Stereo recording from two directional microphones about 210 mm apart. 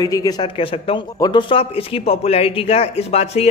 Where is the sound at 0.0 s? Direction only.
20° left (ahead or behind).